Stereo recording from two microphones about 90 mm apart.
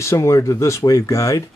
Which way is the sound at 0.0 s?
30° left (ahead or behind).